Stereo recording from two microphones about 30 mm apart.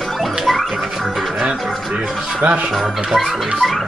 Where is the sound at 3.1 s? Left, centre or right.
Centre.